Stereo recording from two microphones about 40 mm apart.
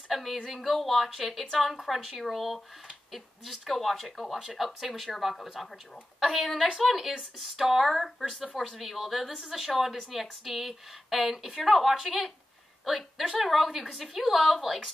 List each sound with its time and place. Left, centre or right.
0.1 s speech: centre
1.4 s a woman's voice: centre
1.7 s a woman's voice: centre